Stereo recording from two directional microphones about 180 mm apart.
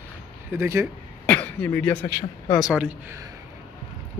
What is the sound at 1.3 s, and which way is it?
Throat clearing, 10° left (ahead or behind).